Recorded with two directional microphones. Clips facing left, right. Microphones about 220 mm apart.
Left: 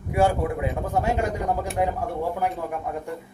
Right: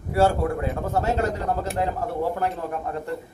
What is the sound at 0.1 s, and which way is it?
A man's voice, 15° left (ahead or behind).